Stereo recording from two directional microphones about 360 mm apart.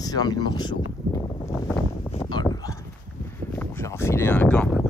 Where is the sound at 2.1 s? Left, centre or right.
Centre.